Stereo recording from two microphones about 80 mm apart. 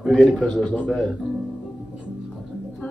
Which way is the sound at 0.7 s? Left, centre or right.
Centre.